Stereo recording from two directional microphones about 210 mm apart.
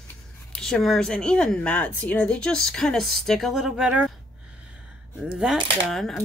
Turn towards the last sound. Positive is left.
turn(degrees=0)  # may be behind; listen again after turning